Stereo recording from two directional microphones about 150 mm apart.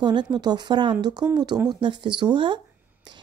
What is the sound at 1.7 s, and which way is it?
Speech, 30° right (ahead or behind).